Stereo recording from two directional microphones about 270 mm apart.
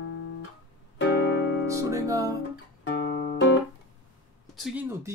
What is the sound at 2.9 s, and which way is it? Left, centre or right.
Music, left.